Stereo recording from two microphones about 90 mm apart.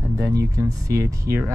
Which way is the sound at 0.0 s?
40° right (ahead or behind).